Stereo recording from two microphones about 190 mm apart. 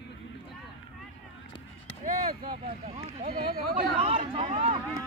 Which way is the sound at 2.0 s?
45° right (ahead or behind).